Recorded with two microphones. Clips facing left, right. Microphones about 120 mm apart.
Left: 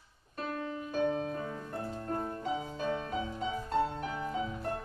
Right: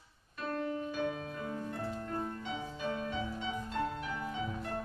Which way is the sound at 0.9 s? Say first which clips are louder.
Left 5 dB; 35° left (ahead or behind).